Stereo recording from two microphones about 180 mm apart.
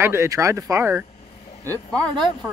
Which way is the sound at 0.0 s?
15° right (ahead or behind).